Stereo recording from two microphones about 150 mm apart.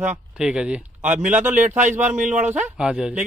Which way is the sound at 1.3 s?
10° right (ahead or behind).